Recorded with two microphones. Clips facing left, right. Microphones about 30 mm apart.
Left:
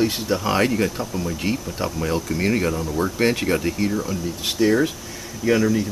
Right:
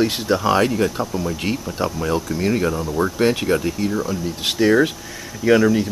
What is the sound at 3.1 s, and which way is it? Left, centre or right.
Speech, centre.